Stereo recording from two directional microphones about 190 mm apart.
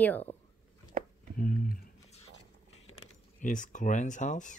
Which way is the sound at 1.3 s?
45° left (ahead or behind).